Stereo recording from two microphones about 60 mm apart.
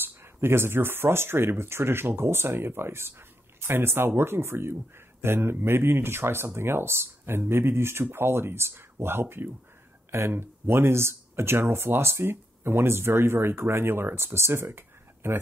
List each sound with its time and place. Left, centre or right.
0.0 s speech: right